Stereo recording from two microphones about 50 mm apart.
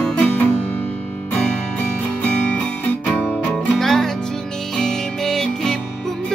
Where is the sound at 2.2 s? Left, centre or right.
Left.